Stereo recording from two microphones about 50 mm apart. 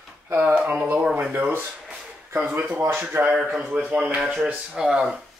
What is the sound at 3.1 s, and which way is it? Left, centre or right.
Speech, right.